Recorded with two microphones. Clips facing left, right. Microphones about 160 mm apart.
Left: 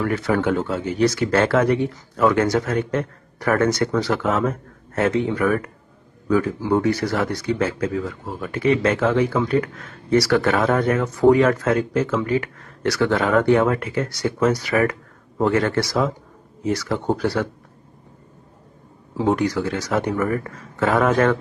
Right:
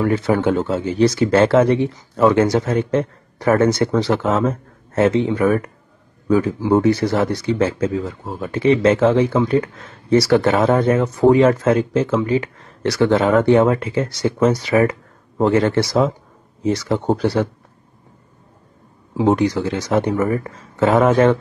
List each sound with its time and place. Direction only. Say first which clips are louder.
0.0 s speech: right 4 dB; 25° right (ahead or behind)
19.1 s speech: right 4 dB; 20° right (ahead or behind)